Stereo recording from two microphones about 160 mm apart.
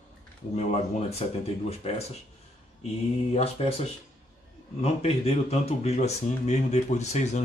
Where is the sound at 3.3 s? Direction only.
40° left (ahead or behind).